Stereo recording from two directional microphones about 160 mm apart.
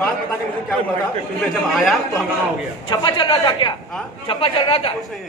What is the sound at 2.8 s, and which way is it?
A man's voice, 25° left (ahead or behind).